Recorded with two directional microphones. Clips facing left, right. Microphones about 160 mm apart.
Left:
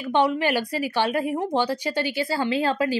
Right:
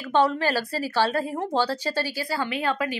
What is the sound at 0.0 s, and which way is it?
Speech, 15° left (ahead or behind).